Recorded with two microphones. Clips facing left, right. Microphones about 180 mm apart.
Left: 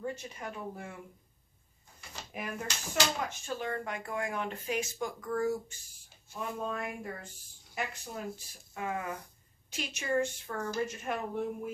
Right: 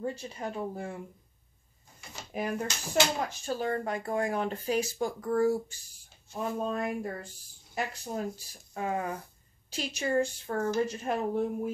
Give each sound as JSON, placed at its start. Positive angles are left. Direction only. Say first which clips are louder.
{"t": 0.0, "sound": "speech", "louder": "right 4 dB", "side_deg": -30}
{"t": 2.3, "sound": "speech", "louder": "right 6 dB", "side_deg": -35}